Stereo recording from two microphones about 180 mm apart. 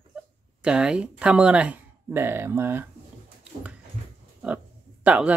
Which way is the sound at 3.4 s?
5° right (ahead or behind).